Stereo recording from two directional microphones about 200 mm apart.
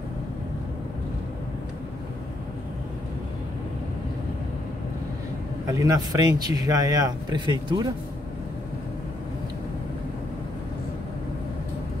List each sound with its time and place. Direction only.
5.7 s speech: 20° right (ahead or behind)